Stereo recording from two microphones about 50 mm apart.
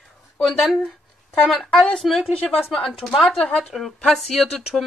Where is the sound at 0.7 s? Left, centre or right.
Centre.